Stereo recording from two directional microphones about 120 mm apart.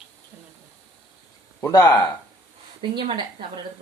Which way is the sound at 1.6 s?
25° left (ahead or behind).